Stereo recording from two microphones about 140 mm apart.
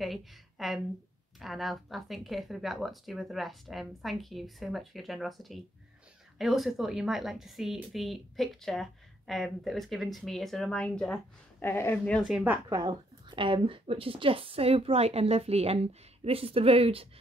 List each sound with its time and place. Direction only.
0.0 s a woman's voice: centre (ahead or behind)
12.3 s speech: 5° right (ahead or behind)
12.6 s a woman's voice: 30° right (ahead or behind)